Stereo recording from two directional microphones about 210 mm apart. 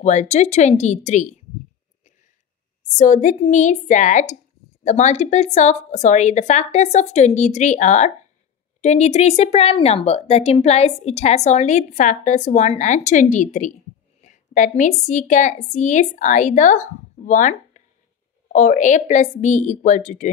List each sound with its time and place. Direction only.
0.0 s speech: 35° left (ahead or behind)
3.0 s speech: 35° left (ahead or behind)